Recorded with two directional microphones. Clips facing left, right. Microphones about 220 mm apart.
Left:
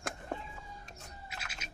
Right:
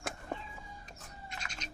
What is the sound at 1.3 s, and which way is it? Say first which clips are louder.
Music: right 2 dB; 5° left (ahead or behind).